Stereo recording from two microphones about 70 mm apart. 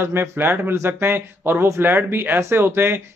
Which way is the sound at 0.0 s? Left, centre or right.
Right.